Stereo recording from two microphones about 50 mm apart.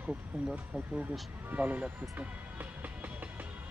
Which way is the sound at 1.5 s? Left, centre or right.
Right.